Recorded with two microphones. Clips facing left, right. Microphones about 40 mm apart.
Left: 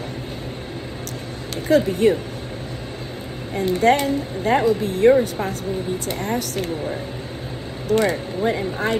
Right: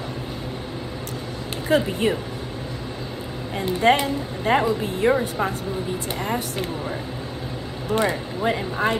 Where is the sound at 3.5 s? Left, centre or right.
Right.